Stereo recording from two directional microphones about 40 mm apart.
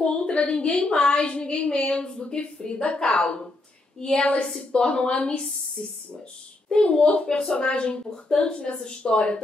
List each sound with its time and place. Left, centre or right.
0.0 s a woman's voice: left
5.8 s speech: centre
6.7 s a woman's voice: left